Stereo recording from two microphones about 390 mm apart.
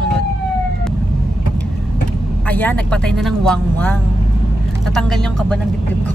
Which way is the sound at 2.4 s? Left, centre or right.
Centre.